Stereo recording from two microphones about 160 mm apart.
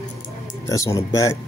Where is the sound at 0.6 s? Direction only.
20° left (ahead or behind).